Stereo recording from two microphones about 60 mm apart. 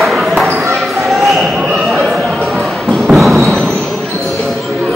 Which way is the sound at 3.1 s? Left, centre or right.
Centre.